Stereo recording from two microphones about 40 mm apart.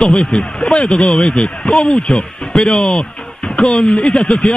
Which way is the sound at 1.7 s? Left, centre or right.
Centre.